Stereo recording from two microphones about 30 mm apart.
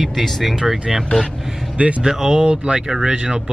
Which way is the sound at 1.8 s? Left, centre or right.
Right.